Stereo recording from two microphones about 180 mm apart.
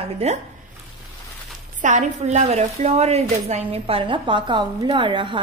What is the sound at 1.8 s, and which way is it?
A woman's voice, 40° right (ahead or behind).